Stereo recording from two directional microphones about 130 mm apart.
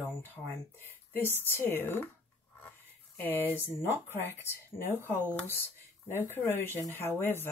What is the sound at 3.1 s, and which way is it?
Speech, 15° left (ahead or behind).